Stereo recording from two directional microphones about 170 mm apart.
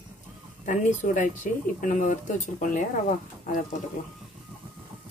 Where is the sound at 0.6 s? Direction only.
45° left (ahead or behind).